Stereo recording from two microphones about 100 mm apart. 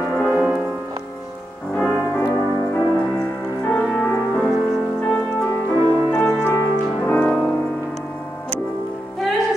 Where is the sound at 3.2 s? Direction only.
10° left (ahead or behind).